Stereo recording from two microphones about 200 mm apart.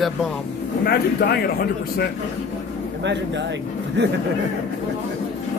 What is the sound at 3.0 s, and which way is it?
A man's voice, 60° right (ahead or behind).